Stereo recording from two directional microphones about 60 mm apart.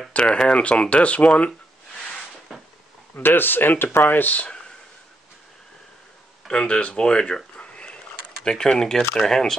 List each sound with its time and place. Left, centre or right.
0.1 s speech: centre
3.2 s speech: left
6.4 s speech: centre